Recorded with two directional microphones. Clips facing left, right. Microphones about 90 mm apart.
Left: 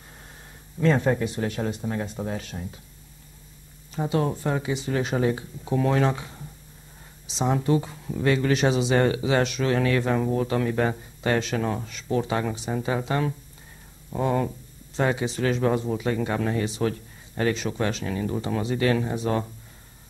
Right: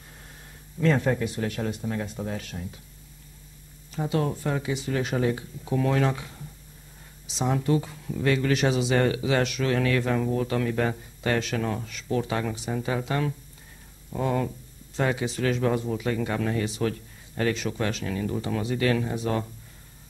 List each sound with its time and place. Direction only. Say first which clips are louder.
0.7 s speech: left 2 dB; 25° left (ahead or behind)
3.9 s speech: left 2 dB; 25° left (ahead or behind)